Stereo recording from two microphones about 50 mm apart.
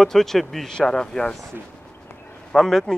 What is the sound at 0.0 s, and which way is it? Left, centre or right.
Speech, centre.